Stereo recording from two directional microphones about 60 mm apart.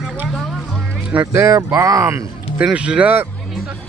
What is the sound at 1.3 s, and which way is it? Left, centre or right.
Speech, right.